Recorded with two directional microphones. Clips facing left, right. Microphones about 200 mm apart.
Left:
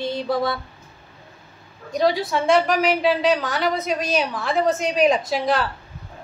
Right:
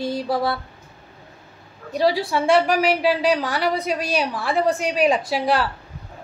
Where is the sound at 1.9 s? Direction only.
5° right (ahead or behind).